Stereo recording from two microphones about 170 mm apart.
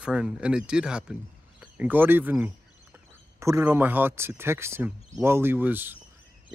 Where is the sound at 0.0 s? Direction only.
5° right (ahead or behind).